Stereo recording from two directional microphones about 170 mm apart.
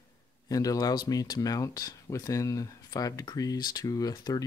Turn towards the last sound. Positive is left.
turn(degrees=20)  # may be behind; listen again after turning